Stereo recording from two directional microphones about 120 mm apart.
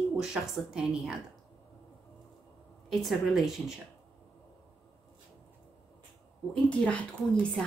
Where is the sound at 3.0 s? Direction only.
5° right (ahead or behind).